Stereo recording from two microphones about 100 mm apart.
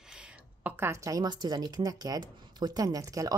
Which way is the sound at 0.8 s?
35° right (ahead or behind).